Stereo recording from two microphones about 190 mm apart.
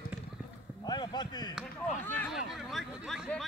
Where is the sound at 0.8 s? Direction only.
20° left (ahead or behind).